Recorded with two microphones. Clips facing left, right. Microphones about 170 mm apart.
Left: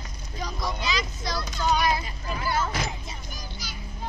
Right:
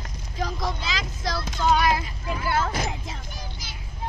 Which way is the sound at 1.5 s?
90° right.